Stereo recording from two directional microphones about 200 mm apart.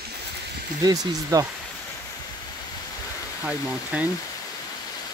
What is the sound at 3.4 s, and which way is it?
Speech, 5° right (ahead or behind).